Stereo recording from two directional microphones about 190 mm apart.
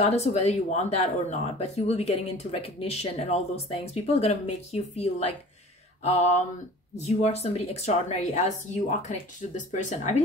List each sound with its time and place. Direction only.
0.0 s speech: 35° left (ahead or behind)
9.6 s speech: 40° left (ahead or behind)